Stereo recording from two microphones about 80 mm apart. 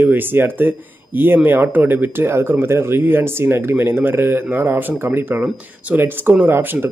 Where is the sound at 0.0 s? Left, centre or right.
Right.